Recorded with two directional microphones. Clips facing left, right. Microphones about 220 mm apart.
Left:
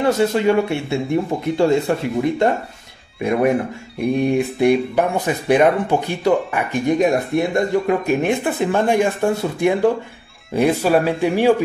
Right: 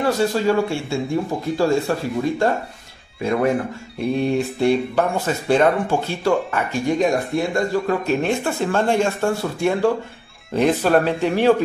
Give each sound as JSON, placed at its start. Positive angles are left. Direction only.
{"t": 0.0, "sound": "speech", "side_deg": 20}
{"t": 4.0, "sound": "speech", "side_deg": 15}